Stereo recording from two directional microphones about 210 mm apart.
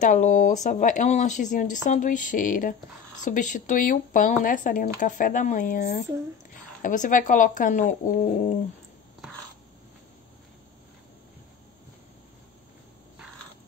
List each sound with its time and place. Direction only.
0.0 s speech: 35° left (ahead or behind)